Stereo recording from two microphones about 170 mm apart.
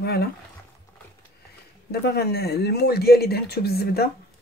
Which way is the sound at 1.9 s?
70° left (ahead or behind).